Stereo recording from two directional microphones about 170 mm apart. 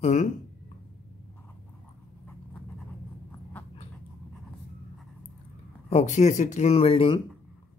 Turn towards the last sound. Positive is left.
turn(degrees=35)  # may be behind; listen again after turning